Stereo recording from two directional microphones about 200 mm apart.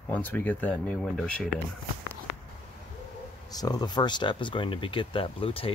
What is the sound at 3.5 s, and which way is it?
Speech, 20° left (ahead or behind).